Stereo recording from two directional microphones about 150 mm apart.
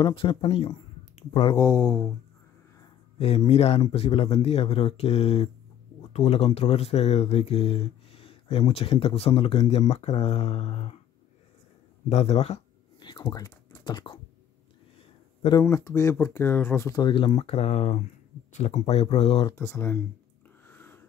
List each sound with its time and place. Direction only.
0.0 s speech: 35° left (ahead or behind)
1.6 s speech: 20° left (ahead or behind)
3.2 s speech: 40° left (ahead or behind)
12.1 s speech: 45° left (ahead or behind)
13.0 s speech: 30° left (ahead or behind)
15.6 s speech: 15° left (ahead or behind); by 19.5 s 45° left (ahead or behind)
19.5 s speech: 15° left (ahead or behind)
20.6 s a sound: 15° left (ahead or behind)